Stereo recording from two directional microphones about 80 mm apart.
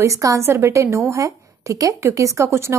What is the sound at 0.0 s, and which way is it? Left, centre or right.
A woman's voice, right.